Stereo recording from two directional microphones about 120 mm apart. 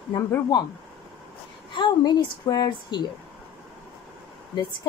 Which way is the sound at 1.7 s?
40° left (ahead or behind).